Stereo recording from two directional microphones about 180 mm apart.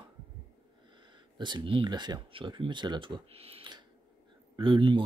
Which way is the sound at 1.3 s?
25° right (ahead or behind).